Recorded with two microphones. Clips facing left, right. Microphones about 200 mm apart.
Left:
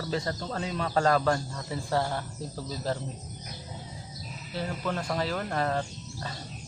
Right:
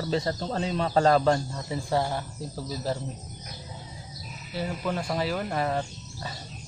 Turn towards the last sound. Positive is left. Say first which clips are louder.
# even
turn(degrees=-10)  # may be behind; listen again after turning